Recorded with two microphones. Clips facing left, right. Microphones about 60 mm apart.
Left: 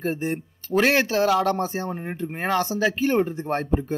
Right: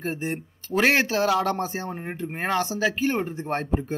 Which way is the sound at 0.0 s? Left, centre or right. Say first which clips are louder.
Left 3 dB; right.